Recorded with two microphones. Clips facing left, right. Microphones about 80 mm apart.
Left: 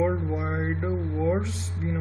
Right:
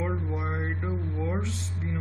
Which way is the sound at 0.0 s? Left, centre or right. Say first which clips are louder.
Left 6 dB; centre.